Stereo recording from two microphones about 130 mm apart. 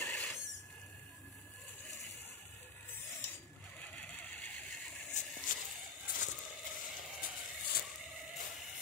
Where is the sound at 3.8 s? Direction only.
10° left (ahead or behind).